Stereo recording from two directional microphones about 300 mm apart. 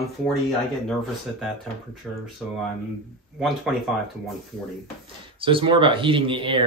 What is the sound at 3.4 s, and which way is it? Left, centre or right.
Speech, centre.